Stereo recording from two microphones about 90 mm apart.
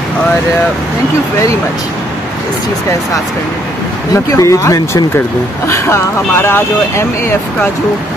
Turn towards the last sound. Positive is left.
turn(degrees=30)  # may be behind; listen again after turning